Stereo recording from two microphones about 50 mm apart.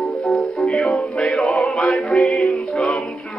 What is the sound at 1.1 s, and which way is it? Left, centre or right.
Music, left.